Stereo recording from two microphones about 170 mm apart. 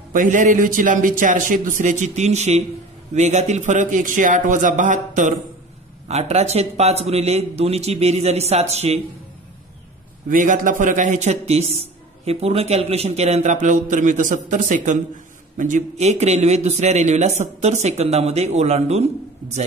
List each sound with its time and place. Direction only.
0.1 s a man's voice: 50° right (ahead or behind)
10.3 s a man's voice: 50° right (ahead or behind)